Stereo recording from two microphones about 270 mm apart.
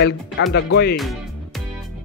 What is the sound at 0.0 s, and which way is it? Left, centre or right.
Speech, left.